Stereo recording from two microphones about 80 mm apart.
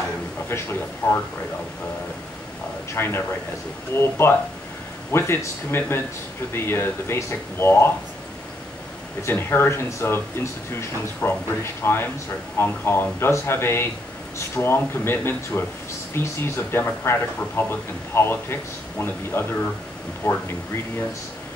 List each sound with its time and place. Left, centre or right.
0.5 s speech: left
2.9 s speech: left
9.2 s speech: left